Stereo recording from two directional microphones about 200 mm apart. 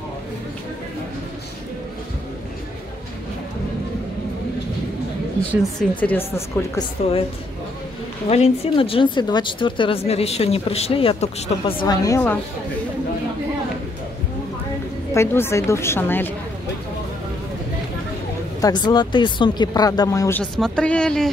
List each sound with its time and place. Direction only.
5.5 s speech: 10° left (ahead or behind)
8.3 s speech: 30° left (ahead or behind); by 12.4 s 15° left (ahead or behind)
15.1 s speech: 15° left (ahead or behind)
18.6 s speech: 20° left (ahead or behind)
20.5 s speech: 5° left (ahead or behind)